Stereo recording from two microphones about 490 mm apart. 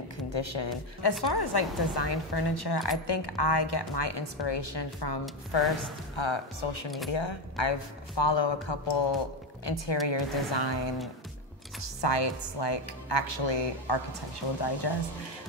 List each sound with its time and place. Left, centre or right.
0.3 s speech: left
1.2 s a woman's voice: left